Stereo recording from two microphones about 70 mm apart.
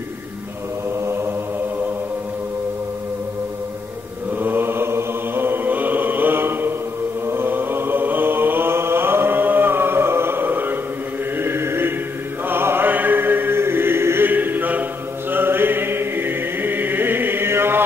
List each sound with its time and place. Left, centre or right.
1.0 s mantra: right
4.4 s mantra: right
11.3 s chant: right
12.4 s music: right